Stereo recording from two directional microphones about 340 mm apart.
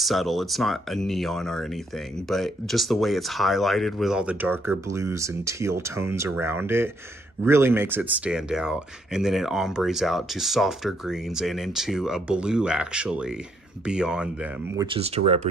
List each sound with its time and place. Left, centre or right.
0.0 s speech: centre
14.8 s speech: centre